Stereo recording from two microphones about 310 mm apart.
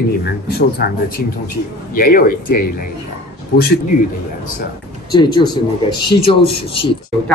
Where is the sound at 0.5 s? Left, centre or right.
Left.